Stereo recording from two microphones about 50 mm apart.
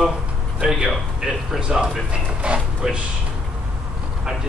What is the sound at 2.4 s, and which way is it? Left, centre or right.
Music, centre.